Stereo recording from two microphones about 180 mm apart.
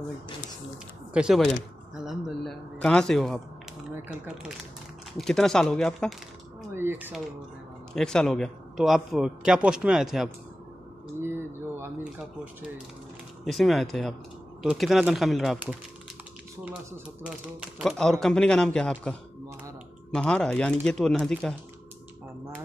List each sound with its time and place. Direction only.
1.1 s a sound: 5° right (ahead or behind)
5.1 s a man's voice: centre (ahead or behind)
6.7 s speech: 15° right (ahead or behind)
7.9 s a man's voice: 5° left (ahead or behind)
11.1 s speech: 15° right (ahead or behind)
13.4 s a man's voice: centre (ahead or behind)
17.2 s a man's voice: 5° right (ahead or behind)
20.2 s a man's voice: 5° left (ahead or behind)